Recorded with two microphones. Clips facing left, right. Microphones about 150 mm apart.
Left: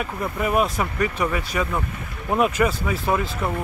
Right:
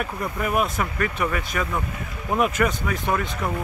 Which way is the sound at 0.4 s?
20° left (ahead or behind).